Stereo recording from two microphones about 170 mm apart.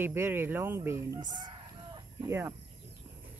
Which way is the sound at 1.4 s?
25° right (ahead or behind).